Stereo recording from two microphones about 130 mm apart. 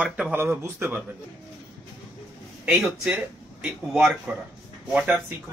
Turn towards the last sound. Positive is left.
turn(degrees=-10)  # may be behind; listen again after turning